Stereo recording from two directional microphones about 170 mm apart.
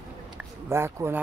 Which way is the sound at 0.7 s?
15° right (ahead or behind).